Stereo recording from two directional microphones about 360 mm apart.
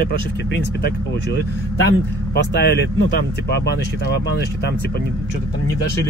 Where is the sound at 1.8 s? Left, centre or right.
Left.